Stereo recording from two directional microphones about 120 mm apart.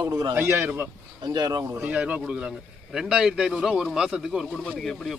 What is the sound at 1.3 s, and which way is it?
Speech, 35° right (ahead or behind).